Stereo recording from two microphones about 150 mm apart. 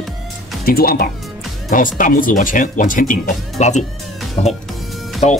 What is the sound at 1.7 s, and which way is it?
Speech, 65° left (ahead or behind).